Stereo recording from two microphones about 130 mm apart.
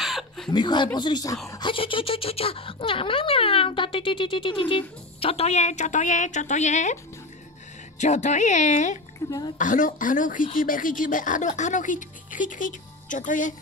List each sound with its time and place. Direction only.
0.0 s chuckle: centre (ahead or behind)
0.5 s speech: 35° left (ahead or behind)
1.6 s speech: 40° left (ahead or behind); by 7.0 s 65° left (ahead or behind)
8.0 s a woman's voice: 65° left (ahead or behind)
9.6 s speech: 90° left